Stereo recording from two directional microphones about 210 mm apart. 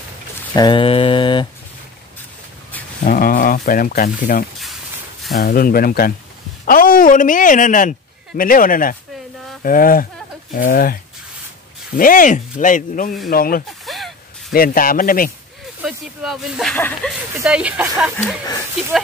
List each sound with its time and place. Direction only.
0.6 s mantra: 25° left (ahead or behind)
3.0 s a man's voice: 40° left (ahead or behind)
13.7 s a sound: centre (ahead or behind)
14.5 s speech: 45° left (ahead or behind)
15.8 s speech: centre (ahead or behind)
17.5 s speech: 5° right (ahead or behind)
18.1 s speech: 10° left (ahead or behind)